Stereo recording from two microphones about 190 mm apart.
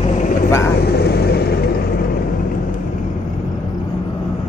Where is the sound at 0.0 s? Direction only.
40° left (ahead or behind).